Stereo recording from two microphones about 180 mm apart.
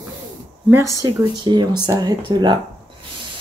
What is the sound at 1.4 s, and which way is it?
Speech, 25° right (ahead or behind).